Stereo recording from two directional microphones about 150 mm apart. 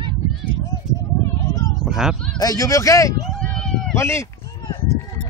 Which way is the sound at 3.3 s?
5° left (ahead or behind).